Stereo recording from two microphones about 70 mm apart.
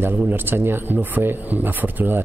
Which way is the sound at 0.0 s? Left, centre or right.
Right.